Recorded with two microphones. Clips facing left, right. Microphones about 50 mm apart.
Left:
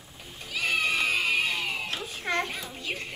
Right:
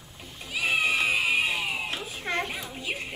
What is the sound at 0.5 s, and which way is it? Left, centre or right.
Music, centre.